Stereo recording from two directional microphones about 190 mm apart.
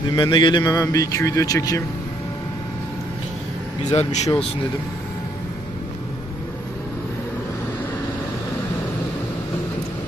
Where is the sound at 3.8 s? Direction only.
35° left (ahead or behind).